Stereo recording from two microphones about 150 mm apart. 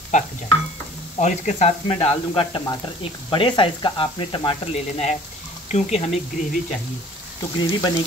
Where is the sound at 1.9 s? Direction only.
35° left (ahead or behind).